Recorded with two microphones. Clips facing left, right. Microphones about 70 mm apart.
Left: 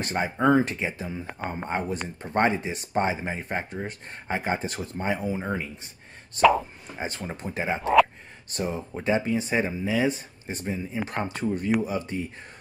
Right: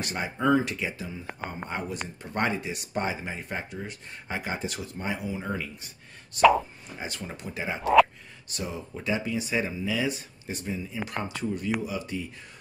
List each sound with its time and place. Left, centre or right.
0.0 s speech: left